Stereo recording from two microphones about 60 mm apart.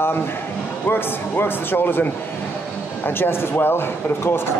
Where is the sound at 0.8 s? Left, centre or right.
Left.